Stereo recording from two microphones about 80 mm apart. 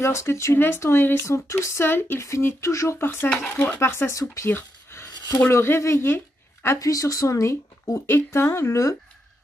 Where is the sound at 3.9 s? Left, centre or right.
Left.